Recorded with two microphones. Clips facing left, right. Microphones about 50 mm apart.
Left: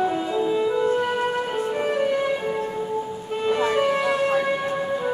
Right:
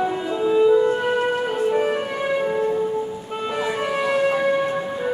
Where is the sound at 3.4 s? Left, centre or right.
Centre.